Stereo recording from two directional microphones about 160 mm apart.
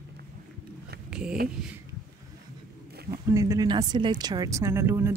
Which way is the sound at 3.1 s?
20° right (ahead or behind).